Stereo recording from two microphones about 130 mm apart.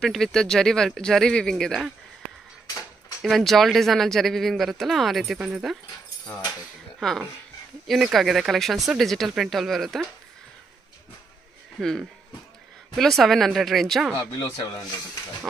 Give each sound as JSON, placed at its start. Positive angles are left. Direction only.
{"t": 0.0, "sound": "speech", "side_deg": 5}
{"t": 2.6, "sound": "a sound", "side_deg": 25}
{"t": 3.2, "sound": "speech", "side_deg": 0}
{"t": 7.0, "sound": "speech", "side_deg": 5}
{"t": 11.8, "sound": "speech", "side_deg": 5}